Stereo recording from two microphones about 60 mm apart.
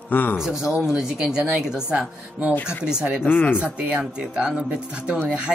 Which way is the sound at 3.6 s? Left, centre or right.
Right.